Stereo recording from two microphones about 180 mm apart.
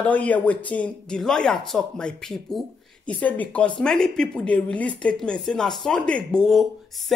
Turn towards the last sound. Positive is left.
turn(degrees=0)  # may be behind; listen again after turning